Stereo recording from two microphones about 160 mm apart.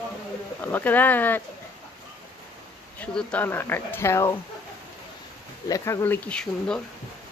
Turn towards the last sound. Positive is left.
turn(degrees=5)  # may be behind; listen again after turning